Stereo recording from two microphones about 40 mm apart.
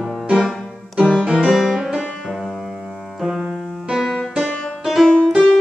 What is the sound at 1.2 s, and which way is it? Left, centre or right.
Music, right.